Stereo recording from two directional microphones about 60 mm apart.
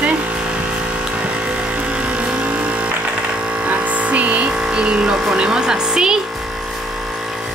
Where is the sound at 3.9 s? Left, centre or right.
Right.